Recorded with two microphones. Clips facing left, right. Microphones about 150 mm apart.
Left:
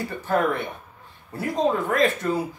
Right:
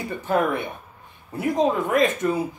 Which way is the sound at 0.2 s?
15° right (ahead or behind).